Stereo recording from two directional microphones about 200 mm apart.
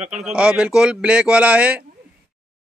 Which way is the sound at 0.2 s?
5° right (ahead or behind).